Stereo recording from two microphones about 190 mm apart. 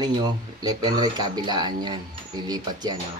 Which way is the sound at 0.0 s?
20° right (ahead or behind).